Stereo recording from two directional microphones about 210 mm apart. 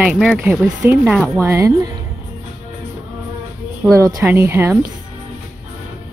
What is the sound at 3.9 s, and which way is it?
Speech, 15° right (ahead or behind).